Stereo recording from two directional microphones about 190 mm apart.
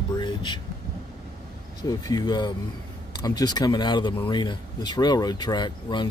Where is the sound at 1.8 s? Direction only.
20° left (ahead or behind).